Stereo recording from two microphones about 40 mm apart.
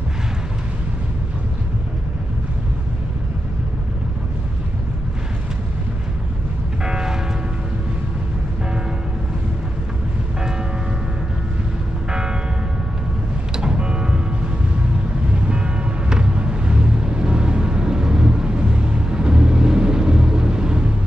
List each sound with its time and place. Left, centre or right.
6.8 s music: centre
12.1 s church bell: centre
13.6 s vehicle: right
15.4 s vehicle: right